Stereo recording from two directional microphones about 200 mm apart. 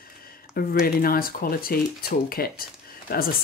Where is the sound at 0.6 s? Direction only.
50° left (ahead or behind).